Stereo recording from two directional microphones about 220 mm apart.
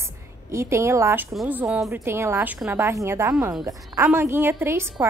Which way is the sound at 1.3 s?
5° right (ahead or behind).